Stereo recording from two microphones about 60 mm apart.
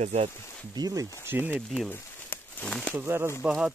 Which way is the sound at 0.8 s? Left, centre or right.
Right.